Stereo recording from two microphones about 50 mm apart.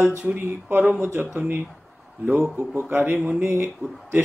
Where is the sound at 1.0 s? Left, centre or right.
Right.